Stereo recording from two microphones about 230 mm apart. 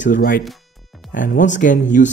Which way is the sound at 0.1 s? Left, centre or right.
Left.